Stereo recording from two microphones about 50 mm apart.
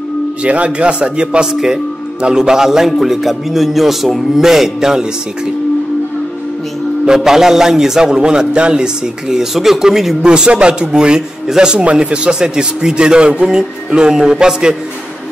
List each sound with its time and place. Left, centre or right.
0.4 s a man's voice: right
7.2 s a man's voice: centre
10.2 s a man's voice: centre